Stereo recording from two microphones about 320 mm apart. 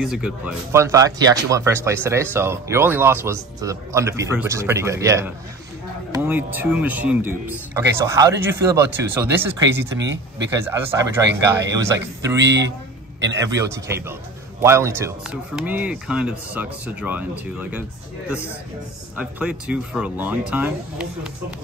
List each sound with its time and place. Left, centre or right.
0.0 s speech: centre
9.8 s speech: right
10.5 s speech: centre
12.4 s speech: right
13.4 s speech: centre
19.1 s speech: centre